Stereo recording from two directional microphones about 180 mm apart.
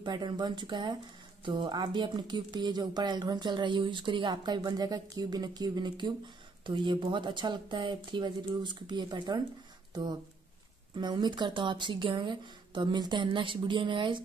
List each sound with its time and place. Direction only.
0.0 s speech: 25° right (ahead or behind)